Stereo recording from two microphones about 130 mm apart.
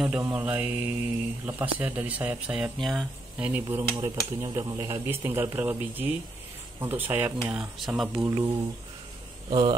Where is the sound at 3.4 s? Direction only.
15° right (ahead or behind).